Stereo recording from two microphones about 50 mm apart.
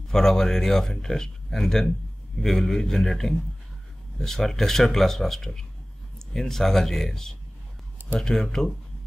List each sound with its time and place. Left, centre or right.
0.1 s speech: centre